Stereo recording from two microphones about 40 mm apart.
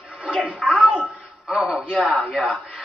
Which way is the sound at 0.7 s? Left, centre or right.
Right.